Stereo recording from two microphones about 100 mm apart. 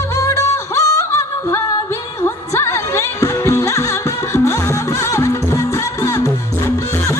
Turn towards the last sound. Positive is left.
turn(degrees=30)  # may be behind; listen again after turning